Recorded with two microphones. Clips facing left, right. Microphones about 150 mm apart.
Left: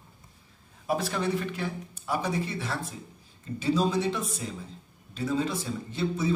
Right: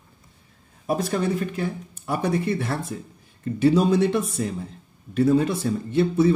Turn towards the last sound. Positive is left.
turn(degrees=-65)  # may be behind; listen again after turning